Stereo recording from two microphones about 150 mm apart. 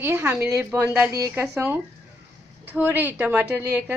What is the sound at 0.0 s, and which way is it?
A woman's voice, 15° right (ahead or behind).